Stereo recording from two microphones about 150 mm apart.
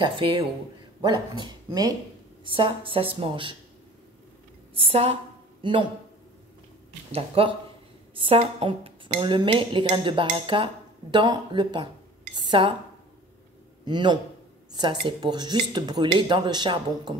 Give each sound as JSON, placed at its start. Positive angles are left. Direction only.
{"t": 0.0, "sound": "speech", "side_deg": -35}
{"t": 4.7, "sound": "a man's voice", "side_deg": -40}
{"t": 7.1, "sound": "speech", "side_deg": -40}
{"t": 13.8, "sound": "speech", "side_deg": -30}